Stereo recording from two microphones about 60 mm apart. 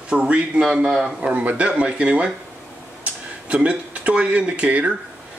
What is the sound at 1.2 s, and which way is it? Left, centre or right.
A man's voice, right.